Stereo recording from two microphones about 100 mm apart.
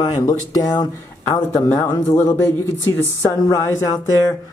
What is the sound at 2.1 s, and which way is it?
Speech, 20° left (ahead or behind).